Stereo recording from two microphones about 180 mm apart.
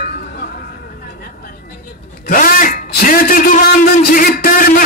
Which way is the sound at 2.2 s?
50° left (ahead or behind).